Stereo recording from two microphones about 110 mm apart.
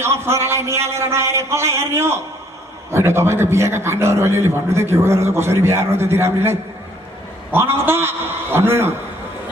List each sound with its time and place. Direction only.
0.0 s a man's voice: 25° right (ahead or behind)